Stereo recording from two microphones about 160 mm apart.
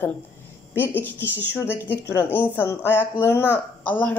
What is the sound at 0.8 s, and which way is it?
A woman's voice, 15° left (ahead or behind).